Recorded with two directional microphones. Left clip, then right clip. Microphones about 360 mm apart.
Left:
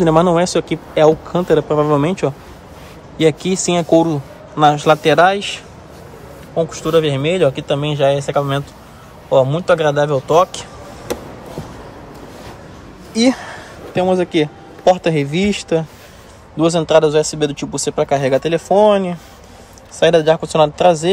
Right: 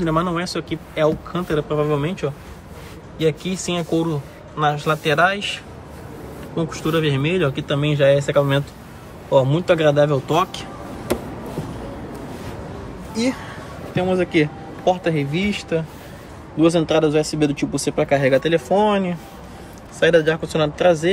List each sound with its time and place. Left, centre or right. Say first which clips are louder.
0.0 s speech: left 9 dB; centre
13.1 s a man's voice: left 8 dB; centre